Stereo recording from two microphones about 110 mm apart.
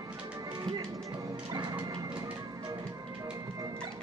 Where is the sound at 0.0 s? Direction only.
35° right (ahead or behind).